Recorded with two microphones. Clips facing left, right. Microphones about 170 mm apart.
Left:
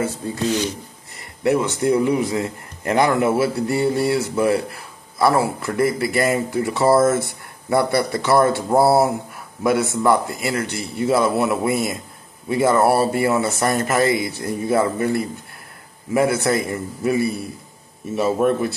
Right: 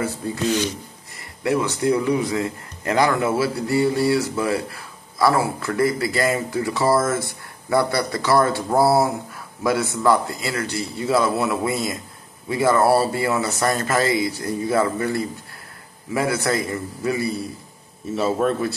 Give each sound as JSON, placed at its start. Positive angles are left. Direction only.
{"t": 1.4, "sound": "a man's voice", "side_deg": 25}